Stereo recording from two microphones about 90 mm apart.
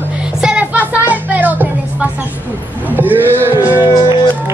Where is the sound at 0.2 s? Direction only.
10° right (ahead or behind).